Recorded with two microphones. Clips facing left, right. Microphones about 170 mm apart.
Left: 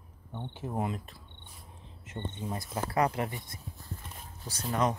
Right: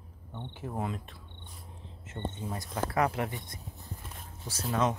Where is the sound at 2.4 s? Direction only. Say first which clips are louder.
Left 1 dB; 10° left (ahead or behind).